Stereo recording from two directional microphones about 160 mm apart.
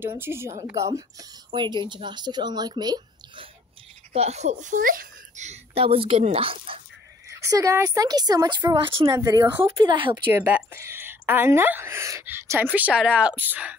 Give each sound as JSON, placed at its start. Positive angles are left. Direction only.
{"t": 0.0, "sound": "a woman's voice", "side_deg": -15}
{"t": 4.1, "sound": "speech", "side_deg": -40}
{"t": 7.4, "sound": "speech", "side_deg": -20}
{"t": 9.1, "sound": "speech", "side_deg": -20}
{"t": 9.7, "sound": "speech", "side_deg": -30}
{"t": 10.1, "sound": "a woman's voice", "side_deg": -10}